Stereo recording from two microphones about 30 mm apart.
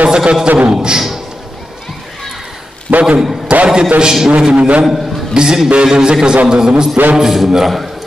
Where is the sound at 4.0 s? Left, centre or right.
Centre.